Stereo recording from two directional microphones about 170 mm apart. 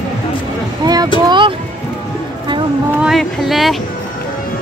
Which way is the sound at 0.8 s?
20° right (ahead or behind).